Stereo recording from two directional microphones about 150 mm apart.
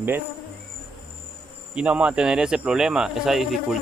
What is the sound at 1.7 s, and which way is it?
Speech, 5° right (ahead or behind).